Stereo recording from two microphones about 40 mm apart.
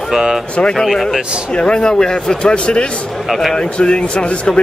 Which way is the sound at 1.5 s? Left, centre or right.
Left.